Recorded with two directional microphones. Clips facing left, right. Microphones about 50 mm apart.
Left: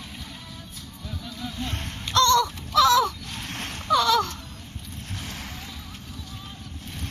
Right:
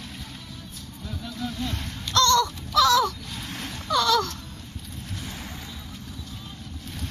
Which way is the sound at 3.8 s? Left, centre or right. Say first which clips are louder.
Left 2 dB; left.